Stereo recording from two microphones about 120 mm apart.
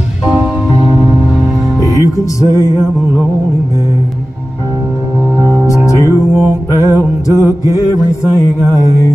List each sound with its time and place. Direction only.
1.8 s music: 25° right (ahead or behind)
5.9 s music: 25° right (ahead or behind)
7.3 s mantra: 25° right (ahead or behind)
7.7 s music: 25° left (ahead or behind)